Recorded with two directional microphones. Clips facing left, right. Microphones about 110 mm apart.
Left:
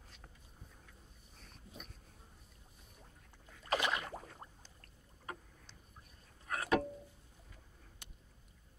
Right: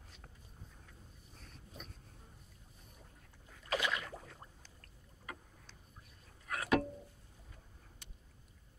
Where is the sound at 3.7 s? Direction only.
30° left (ahead or behind).